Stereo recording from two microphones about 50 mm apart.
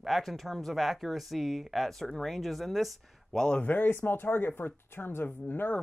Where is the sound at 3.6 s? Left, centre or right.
Left.